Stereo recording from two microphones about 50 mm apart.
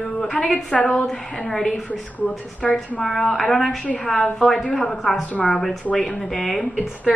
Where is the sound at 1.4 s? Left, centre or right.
Centre.